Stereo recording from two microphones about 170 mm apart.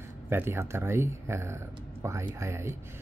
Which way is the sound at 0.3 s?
15° right (ahead or behind).